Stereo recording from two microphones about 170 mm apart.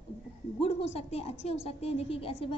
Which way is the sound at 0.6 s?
35° left (ahead or behind).